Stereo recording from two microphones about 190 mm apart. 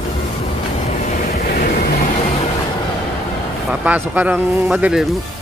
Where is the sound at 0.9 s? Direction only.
45° left (ahead or behind).